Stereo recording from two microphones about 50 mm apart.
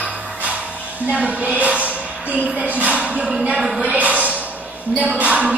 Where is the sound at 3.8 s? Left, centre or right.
Right.